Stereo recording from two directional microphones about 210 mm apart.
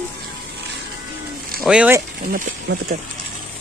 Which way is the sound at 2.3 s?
50° right (ahead or behind).